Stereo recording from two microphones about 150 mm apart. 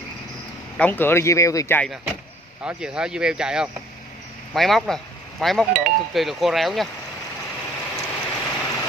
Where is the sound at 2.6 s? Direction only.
5° right (ahead or behind).